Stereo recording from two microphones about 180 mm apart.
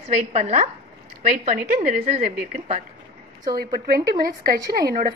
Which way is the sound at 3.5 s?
55° right (ahead or behind).